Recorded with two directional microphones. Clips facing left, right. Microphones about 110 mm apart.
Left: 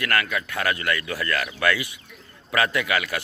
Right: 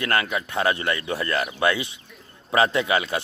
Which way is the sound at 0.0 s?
25° right (ahead or behind).